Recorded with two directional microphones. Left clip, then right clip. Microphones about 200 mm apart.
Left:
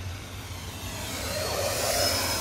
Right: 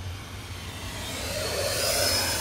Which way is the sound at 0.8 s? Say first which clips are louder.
Even; centre (ahead or behind).